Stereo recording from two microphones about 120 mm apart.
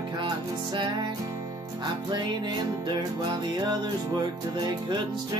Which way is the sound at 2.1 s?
35° right (ahead or behind).